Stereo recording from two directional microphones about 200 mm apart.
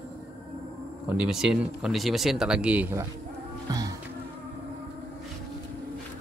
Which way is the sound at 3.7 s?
15° right (ahead or behind).